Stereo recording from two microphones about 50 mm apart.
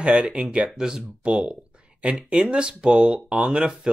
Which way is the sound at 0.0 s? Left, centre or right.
Right.